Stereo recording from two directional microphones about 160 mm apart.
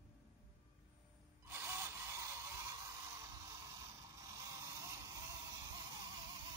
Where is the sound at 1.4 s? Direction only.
15° right (ahead or behind).